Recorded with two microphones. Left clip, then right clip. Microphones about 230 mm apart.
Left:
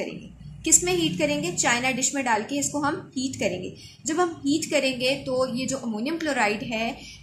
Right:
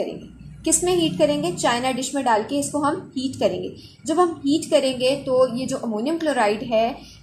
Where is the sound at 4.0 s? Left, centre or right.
Left.